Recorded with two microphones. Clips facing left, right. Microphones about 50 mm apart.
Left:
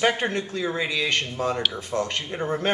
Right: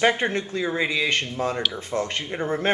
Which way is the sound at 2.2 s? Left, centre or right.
Centre.